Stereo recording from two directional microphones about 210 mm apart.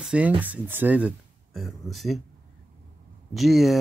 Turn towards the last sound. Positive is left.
turn(degrees=0)  # may be behind; listen again after turning